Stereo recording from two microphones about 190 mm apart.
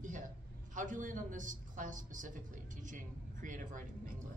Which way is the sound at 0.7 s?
45° right (ahead or behind).